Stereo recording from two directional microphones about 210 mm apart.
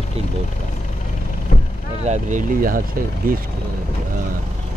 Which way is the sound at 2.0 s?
35° right (ahead or behind).